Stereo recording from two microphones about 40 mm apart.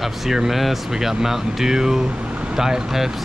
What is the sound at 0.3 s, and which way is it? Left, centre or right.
Speech, centre.